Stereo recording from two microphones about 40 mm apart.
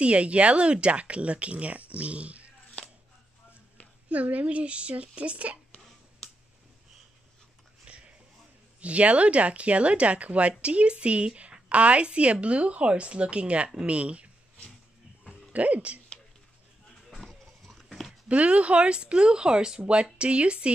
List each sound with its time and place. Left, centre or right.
0.0 s speech: right
4.1 s speech: right
7.8 s a sound: right
8.8 s speech: right
15.2 s music: right
17.1 s goat: centre
18.3 s speech: right